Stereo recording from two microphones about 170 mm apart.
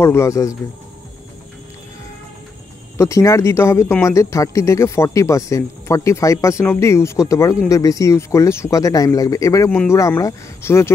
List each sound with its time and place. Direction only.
0.0 s speech: 15° left (ahead or behind)
3.0 s speech: 15° left (ahead or behind)